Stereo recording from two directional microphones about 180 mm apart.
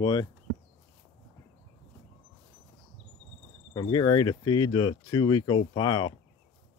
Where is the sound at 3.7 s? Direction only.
20° left (ahead or behind).